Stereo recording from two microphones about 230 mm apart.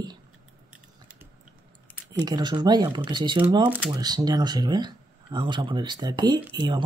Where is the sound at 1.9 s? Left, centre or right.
Centre.